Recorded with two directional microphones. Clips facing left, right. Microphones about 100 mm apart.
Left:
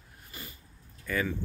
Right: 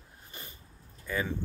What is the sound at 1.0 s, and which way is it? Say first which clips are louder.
Speech: left 2 dB; 20° right (ahead or behind).